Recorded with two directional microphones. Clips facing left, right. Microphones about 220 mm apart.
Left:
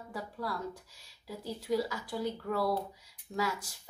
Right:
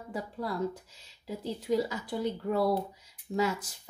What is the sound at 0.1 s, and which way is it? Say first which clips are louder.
A woman's voice: right 4 dB; 20° right (ahead or behind).